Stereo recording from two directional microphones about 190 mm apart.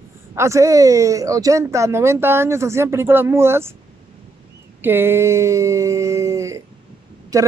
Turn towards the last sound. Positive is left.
turn(degrees=-15)  # may be behind; listen again after turning